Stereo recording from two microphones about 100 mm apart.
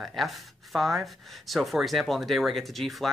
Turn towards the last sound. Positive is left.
turn(degrees=0)  # may be behind; listen again after turning